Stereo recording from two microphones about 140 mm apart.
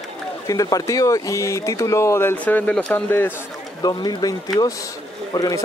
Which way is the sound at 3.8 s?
30° left (ahead or behind).